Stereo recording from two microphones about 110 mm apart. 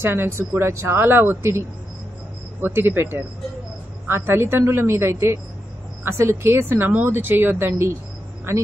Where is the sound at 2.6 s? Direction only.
20° right (ahead or behind).